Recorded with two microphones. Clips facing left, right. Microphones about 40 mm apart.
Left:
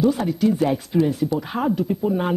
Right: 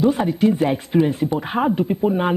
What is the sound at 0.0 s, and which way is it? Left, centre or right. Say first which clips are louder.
A man's voice: right 2 dB; right.